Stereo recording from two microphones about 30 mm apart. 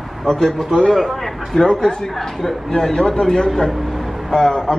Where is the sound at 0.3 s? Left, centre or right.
Centre.